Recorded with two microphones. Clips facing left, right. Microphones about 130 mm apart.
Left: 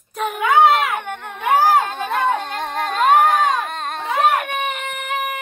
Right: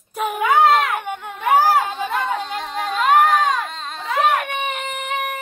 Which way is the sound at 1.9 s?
55° left (ahead or behind).